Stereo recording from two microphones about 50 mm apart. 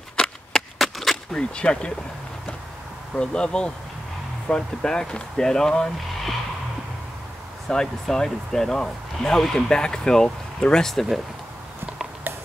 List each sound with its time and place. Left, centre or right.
0.1 s a sound: centre
0.7 s chop: centre
1.3 s speech: centre
3.2 s speech: centre
7.6 s speech: centre